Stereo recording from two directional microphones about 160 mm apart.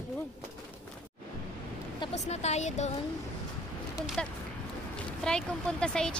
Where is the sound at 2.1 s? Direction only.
45° left (ahead or behind).